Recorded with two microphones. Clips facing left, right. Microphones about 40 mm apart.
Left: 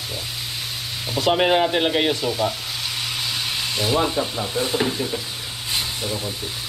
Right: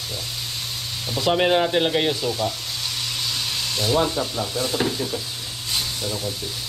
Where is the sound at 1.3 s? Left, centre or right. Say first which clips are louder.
Left 1 dB; left.